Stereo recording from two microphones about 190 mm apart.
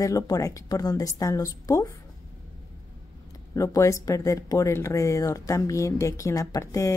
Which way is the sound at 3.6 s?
15° left (ahead or behind).